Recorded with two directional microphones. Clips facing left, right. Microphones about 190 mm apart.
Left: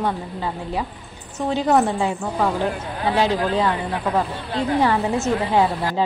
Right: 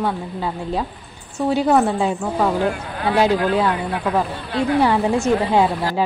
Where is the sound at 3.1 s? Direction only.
10° right (ahead or behind).